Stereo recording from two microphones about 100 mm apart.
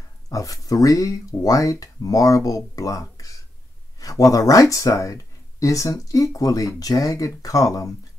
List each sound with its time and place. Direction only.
0.3 s speech: 35° left (ahead or behind)